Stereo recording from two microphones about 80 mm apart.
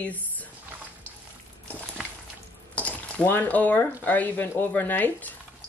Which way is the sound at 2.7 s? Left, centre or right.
Centre.